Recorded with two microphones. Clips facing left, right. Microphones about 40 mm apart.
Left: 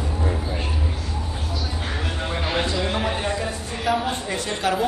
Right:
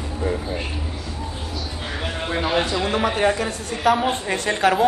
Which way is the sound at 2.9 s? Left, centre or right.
Right.